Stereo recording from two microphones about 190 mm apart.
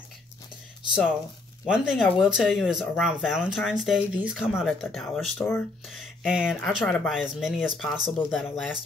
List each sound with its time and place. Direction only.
1.7 s speech: 5° right (ahead or behind)